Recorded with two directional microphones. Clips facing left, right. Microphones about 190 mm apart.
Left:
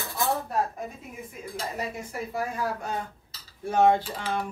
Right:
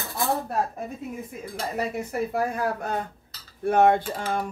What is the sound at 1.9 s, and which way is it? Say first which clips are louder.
Speech: right 6 dB; 60° right (ahead or behind).